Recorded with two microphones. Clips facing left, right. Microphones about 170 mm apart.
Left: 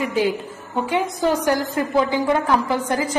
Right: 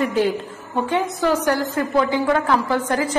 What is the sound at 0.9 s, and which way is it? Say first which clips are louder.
A woman's voice: even; 15° left (ahead or behind).